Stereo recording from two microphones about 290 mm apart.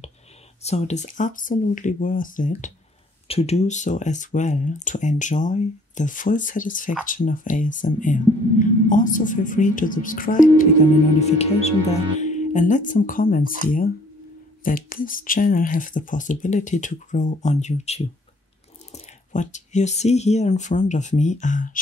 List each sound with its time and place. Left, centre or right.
0.6 s speech: left